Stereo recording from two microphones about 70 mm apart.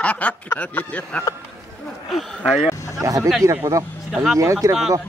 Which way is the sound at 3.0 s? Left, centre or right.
Right.